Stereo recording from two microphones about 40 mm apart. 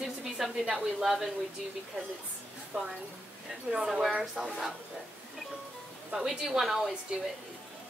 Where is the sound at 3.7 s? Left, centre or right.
Centre.